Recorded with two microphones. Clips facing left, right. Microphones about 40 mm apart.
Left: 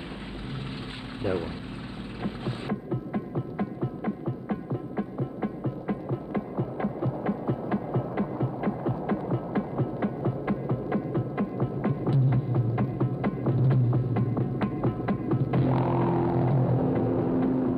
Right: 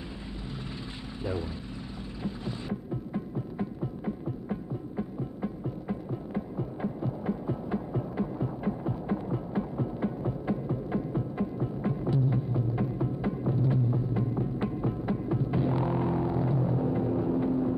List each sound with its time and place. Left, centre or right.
2.2 s music: left